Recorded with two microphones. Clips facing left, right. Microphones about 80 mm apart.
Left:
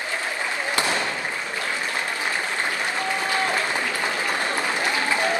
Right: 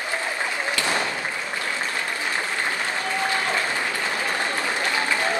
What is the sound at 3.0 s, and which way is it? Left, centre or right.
Applause, left.